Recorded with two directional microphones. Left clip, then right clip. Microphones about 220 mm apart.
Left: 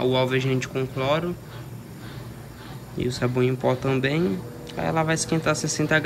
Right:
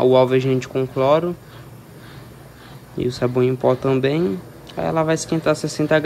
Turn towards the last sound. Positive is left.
turn(degrees=-20)  # may be behind; listen again after turning